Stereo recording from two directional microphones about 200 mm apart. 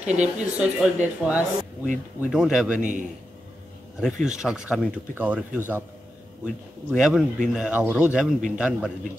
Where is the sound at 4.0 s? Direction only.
5° right (ahead or behind).